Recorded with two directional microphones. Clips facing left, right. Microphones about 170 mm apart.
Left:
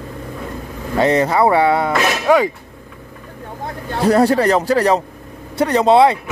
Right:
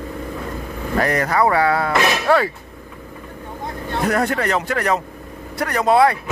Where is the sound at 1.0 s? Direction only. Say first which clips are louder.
Left 4 dB; 25° left (ahead or behind).